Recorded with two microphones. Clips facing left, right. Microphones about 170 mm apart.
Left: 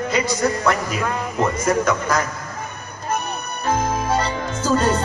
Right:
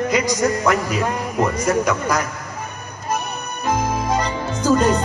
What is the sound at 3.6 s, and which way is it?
Music, 15° right (ahead or behind).